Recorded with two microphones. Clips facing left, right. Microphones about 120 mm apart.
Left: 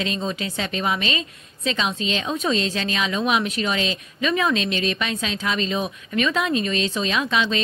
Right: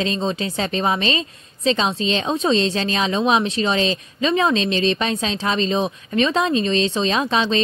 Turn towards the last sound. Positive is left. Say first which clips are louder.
# right 3 dB
turn(degrees=-35)  # may be behind; listen again after turning